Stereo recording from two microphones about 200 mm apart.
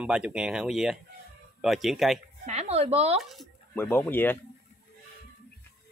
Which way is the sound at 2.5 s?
30° right (ahead or behind).